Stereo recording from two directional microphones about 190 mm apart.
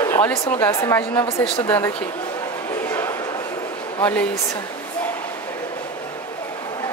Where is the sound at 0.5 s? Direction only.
15° left (ahead or behind).